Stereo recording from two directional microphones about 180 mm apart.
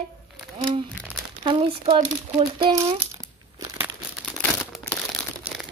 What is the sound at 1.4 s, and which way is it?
Speech, 30° right (ahead or behind).